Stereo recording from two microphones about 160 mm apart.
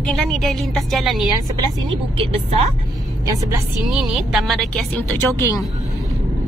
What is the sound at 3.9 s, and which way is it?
Speech, centre (ahead or behind).